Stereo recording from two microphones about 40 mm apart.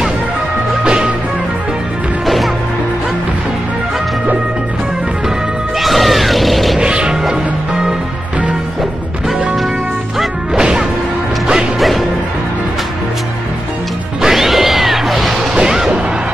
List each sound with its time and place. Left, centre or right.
0.8 s music: right
2.2 s music: centre
5.8 s a sound: centre
6.8 s music: right
10.5 s whack: centre
11.8 s music: centre
14.2 s music: centre
15.5 s smash: centre